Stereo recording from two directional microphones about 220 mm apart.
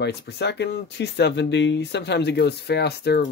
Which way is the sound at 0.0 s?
50° left (ahead or behind).